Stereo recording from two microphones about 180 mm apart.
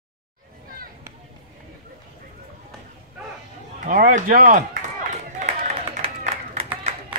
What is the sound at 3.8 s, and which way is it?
Speech, 50° right (ahead or behind).